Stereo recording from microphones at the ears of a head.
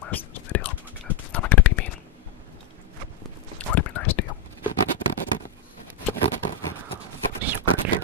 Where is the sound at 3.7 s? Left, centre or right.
Left.